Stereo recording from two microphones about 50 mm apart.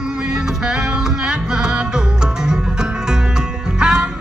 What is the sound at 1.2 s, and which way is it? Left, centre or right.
Music, centre.